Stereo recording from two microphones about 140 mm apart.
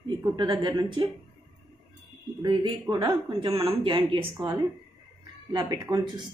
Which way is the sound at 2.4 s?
30° right (ahead or behind).